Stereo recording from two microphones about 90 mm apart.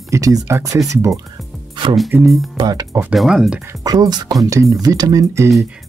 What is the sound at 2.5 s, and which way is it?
Speech, 50° right (ahead or behind).